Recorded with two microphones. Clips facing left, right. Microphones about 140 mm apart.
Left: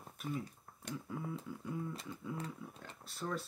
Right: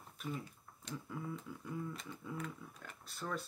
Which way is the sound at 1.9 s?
30° left (ahead or behind).